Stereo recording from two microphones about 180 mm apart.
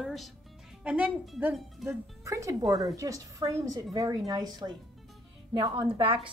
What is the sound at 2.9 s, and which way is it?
A woman's voice, 20° right (ahead or behind).